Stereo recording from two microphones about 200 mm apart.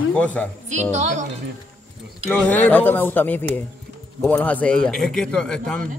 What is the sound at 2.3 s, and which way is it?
A man's voice, 10° left (ahead or behind).